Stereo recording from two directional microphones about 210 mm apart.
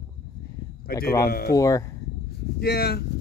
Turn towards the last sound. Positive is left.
turn(degrees=50)  # may be behind; listen again after turning